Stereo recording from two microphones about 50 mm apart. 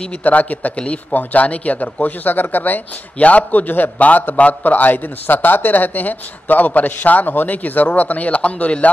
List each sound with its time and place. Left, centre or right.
0.2 s speech: left